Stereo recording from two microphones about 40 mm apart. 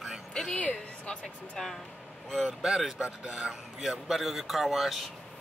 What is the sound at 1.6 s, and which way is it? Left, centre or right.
Speech, centre.